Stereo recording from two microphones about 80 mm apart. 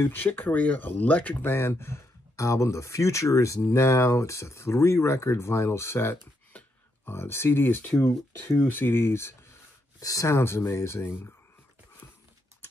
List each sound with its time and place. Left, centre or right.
0.0 s speech: left
9.9 s speech: left